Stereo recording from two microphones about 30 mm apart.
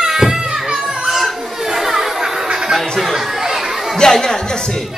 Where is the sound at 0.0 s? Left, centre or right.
Centre.